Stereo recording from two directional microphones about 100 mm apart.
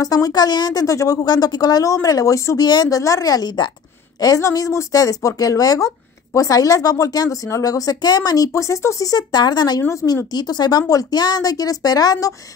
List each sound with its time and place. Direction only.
0.0 s a woman's voice: 40° left (ahead or behind)
4.2 s a woman's voice: 35° left (ahead or behind)
8.5 s a woman's voice: 30° left (ahead or behind)
9.8 s a woman's voice: 30° left (ahead or behind)
10.3 s a woman's voice: 45° left (ahead or behind)